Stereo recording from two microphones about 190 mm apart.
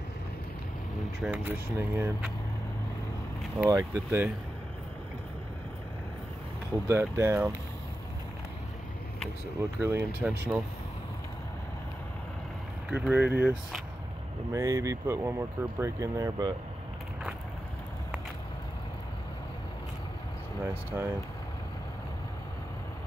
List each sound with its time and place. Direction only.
1.2 s speech: 10° right (ahead or behind)
3.5 s speech: 10° right (ahead or behind)
6.9 s speech: 15° right (ahead or behind)
9.8 s speech: 10° right (ahead or behind)
12.9 s speech: 5° right (ahead or behind)
20.9 s speech: 10° right (ahead or behind)